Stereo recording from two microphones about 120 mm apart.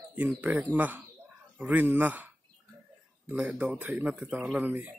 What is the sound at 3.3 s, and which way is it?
Speech, 10° right (ahead or behind).